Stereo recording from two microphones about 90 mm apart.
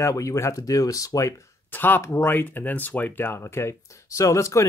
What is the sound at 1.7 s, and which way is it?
Speech, 20° left (ahead or behind).